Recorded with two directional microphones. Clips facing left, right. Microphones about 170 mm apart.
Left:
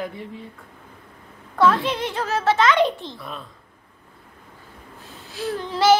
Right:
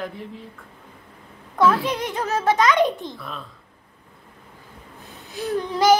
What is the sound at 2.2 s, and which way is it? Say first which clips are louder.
Speech: even; 15° right (ahead or behind).